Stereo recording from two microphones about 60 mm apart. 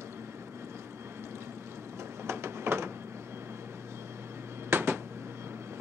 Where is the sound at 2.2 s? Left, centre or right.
Right.